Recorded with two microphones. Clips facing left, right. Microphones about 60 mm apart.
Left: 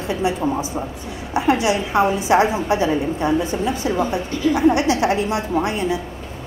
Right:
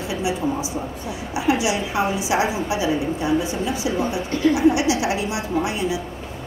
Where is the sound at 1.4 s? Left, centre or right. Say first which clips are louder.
Left 3 dB; left.